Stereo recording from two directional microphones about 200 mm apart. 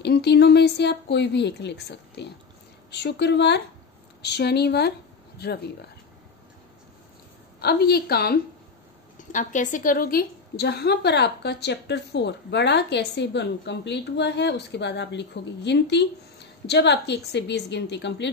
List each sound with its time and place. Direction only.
0.0 s a woman's voice: 55° left (ahead or behind)
7.6 s a woman's voice: 50° left (ahead or behind)
9.3 s a woman's voice: 40° left (ahead or behind); by 18.3 s 60° left (ahead or behind)